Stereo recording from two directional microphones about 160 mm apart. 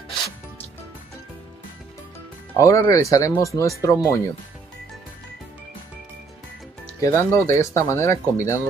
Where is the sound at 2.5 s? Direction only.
20° left (ahead or behind).